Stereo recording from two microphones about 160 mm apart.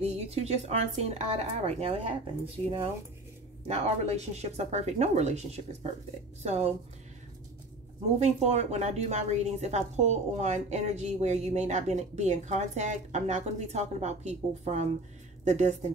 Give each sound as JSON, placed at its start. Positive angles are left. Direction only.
{"t": 0.0, "sound": "a woman's voice", "side_deg": -40}
{"t": 8.2, "sound": "a woman's voice", "side_deg": -45}